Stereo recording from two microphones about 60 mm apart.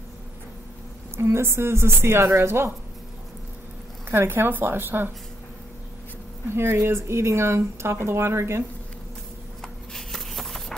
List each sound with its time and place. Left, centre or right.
1.1 s speech: right
4.1 s a woman's voice: right
6.5 s speech: right
9.6 s a sound: centre